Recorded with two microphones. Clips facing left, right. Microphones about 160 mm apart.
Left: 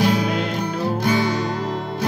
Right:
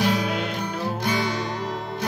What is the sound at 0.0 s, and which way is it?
Music, 35° left (ahead or behind).